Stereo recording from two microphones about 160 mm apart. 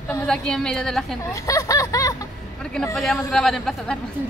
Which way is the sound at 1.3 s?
20° left (ahead or behind).